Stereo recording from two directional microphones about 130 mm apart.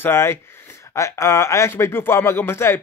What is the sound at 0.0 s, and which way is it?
Speech, 20° left (ahead or behind).